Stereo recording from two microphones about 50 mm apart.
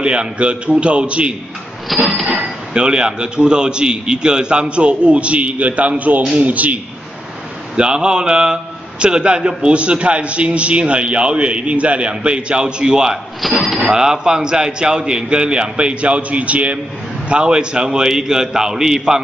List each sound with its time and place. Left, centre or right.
0.0 s a man's voice: right
1.9 s speech: centre
2.2 s a man's voice: centre; by 6.8 s right
7.7 s a man's voice: centre
13.4 s a man's voice: centre